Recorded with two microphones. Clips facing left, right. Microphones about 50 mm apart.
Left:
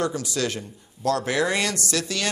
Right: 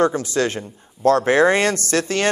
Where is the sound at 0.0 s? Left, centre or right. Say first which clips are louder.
Right 7 dB; right.